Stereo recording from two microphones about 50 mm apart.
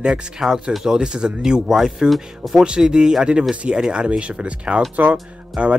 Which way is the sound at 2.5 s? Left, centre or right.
Centre.